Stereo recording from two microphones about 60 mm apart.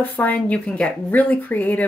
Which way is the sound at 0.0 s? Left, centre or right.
Left.